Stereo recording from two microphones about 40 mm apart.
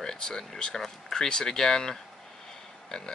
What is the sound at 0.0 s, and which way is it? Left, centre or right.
Speech, centre.